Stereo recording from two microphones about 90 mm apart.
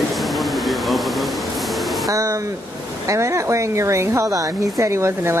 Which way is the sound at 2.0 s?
35° right (ahead or behind).